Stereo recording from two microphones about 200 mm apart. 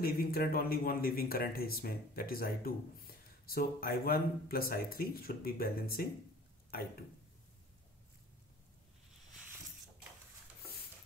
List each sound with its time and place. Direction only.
0.0 s speech: 50° left (ahead or behind)